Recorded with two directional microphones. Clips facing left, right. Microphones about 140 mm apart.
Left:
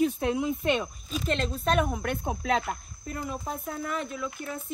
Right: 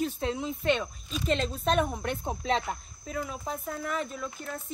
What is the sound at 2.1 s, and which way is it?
Speech, 10° left (ahead or behind).